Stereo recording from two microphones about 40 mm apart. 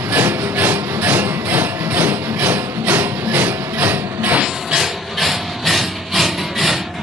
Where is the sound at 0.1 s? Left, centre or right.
Right.